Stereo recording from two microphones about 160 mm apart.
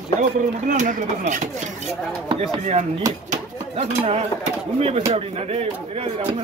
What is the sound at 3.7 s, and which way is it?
Speech, 40° right (ahead or behind).